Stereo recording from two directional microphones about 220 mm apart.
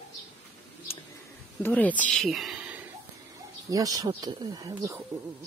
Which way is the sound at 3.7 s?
15° right (ahead or behind).